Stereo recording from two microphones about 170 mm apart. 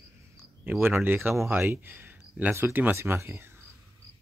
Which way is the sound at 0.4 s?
15° right (ahead or behind).